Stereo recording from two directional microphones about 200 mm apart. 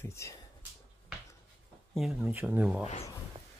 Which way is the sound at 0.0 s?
15° left (ahead or behind).